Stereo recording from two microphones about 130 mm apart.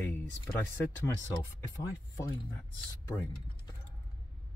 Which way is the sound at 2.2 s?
20° left (ahead or behind).